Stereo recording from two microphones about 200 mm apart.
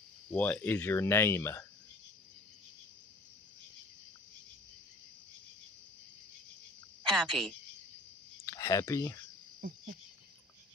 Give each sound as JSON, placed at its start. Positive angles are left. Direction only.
{"t": 0.3, "sound": "speech", "side_deg": 5}
{"t": 7.1, "sound": "a woman's voice", "side_deg": 0}
{"t": 8.5, "sound": "speech", "side_deg": 15}